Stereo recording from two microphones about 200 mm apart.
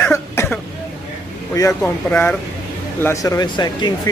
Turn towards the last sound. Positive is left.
turn(degrees=20)  # may be behind; listen again after turning